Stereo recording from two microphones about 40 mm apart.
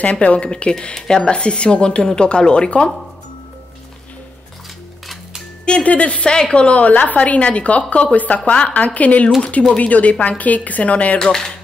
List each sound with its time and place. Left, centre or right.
0.0 s speech: left
5.9 s a woman's voice: left
6.3 s a woman's voice: centre
6.6 s a woman's voice: left